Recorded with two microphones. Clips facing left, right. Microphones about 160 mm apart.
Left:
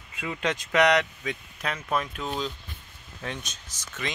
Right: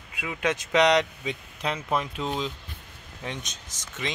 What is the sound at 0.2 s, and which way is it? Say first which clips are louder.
Speech: right 1 dB; 15° right (ahead or behind).